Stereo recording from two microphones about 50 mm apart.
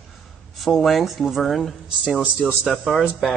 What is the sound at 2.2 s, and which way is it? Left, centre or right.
Speech, centre.